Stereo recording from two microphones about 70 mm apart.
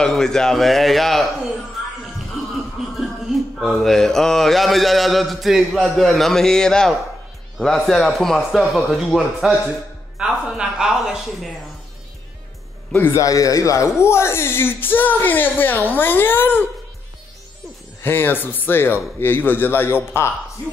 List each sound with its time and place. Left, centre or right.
0.0 s a man's voice: centre
3.0 s mantra: centre
5.7 s a man's voice: centre
8.9 s a man's voice: centre
10.1 s a sound: centre
13.1 s a man's voice: left
14.0 s speech: left
18.0 s a man's voice: left